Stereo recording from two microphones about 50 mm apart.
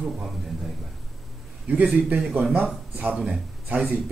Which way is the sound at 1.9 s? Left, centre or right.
Right.